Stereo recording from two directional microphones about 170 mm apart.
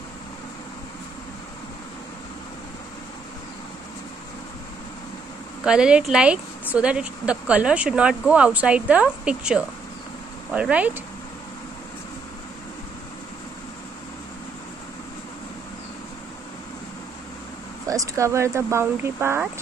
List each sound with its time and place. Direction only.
5.6 s a woman's voice: 5° right (ahead or behind)
17.8 s a woman's voice: 20° right (ahead or behind)